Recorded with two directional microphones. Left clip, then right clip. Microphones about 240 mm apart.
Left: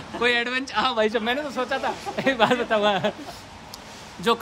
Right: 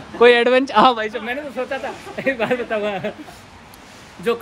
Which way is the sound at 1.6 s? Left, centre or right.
Centre.